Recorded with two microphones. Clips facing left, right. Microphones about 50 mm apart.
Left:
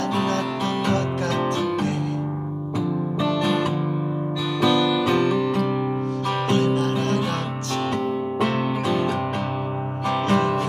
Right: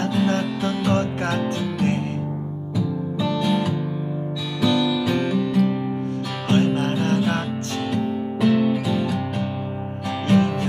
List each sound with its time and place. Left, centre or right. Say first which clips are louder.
3.3 s music: right 1 dB; left
6.5 s music: right 3 dB; right
7.9 s music: even; left
10.2 s music: right 3 dB; left